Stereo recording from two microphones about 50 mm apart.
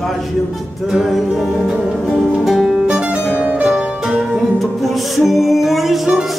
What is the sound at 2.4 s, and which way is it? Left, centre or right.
Music, centre.